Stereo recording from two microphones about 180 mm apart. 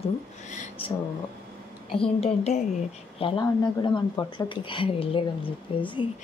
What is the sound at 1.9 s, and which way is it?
Speech, 30° left (ahead or behind).